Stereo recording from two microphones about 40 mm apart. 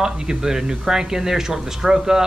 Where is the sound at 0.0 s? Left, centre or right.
Centre.